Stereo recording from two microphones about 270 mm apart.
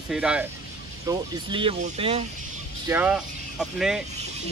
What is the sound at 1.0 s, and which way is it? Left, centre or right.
Speech, centre.